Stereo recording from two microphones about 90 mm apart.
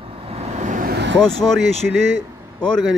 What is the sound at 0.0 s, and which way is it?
Vehicle, 90° right.